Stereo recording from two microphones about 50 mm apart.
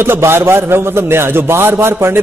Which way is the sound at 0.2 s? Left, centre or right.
Right.